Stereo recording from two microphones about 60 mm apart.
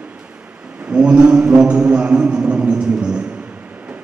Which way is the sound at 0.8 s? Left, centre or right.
Centre.